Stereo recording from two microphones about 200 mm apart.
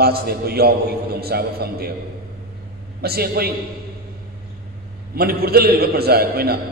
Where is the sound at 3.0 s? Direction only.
50° right (ahead or behind).